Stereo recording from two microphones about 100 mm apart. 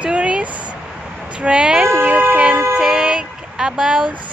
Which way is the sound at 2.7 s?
10° right (ahead or behind).